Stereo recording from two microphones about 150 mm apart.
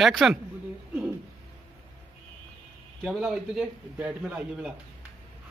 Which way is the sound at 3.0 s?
5° right (ahead or behind).